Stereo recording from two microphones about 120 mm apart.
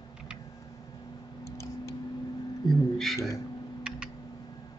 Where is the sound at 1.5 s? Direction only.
25° left (ahead or behind).